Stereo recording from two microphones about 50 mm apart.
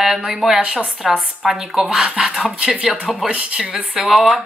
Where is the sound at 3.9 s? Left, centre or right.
Centre.